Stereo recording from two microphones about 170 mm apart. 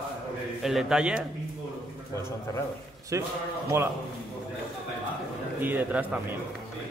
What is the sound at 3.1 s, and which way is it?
Speech, 15° right (ahead or behind).